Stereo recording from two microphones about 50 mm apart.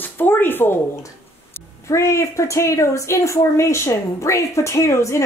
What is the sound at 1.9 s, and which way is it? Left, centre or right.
Speech, left.